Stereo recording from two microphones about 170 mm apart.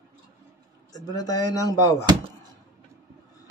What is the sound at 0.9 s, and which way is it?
Speech, 20° left (ahead or behind).